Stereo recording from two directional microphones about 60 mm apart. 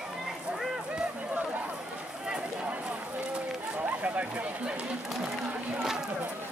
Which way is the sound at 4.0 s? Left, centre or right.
Right.